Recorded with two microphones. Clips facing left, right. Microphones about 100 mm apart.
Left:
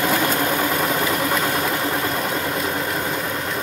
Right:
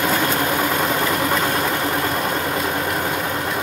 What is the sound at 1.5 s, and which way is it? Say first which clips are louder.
Vehicle: right 1 dB; 5° right (ahead or behind).